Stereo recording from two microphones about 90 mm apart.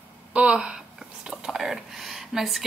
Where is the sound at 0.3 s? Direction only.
10° right (ahead or behind).